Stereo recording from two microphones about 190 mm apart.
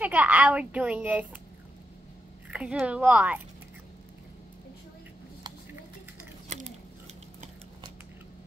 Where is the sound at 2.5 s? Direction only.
5° right (ahead or behind).